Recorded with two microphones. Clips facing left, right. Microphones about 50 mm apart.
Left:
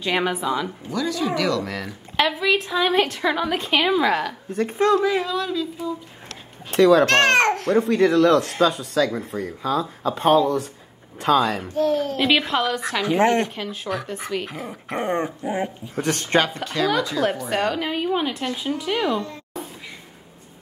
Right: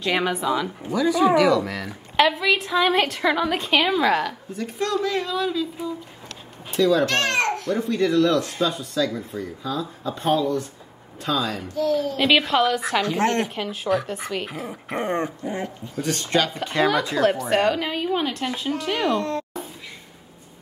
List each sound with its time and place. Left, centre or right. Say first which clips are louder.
0.0 s a woman's voice: even; centre
0.8 s a woman's voice: right 8 dB; centre
4.7 s speech: left 5 dB; centre
5.2 s a woman's voice: even; centre
6.7 s a child's voice: left 5 dB; left
12.2 s a woman's voice: right 4 dB; centre
13.0 s speech: left 8 dB; centre
13.4 s a woman's voice: even; centre
15.4 s speech: left 3 dB; centre
15.9 s a woman's voice: left 1 dB; left
16.6 s speech: right 1 dB; right
17.6 s a woman's voice: right 1 dB; centre